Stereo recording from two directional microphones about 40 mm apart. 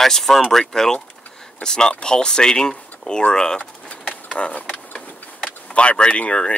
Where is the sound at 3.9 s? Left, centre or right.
Left.